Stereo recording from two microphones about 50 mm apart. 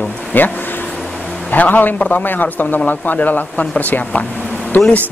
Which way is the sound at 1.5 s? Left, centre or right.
Left.